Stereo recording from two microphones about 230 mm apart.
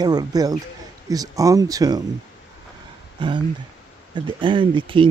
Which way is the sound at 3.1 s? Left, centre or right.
Centre.